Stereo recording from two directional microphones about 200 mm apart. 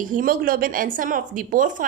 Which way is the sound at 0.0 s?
45° right (ahead or behind).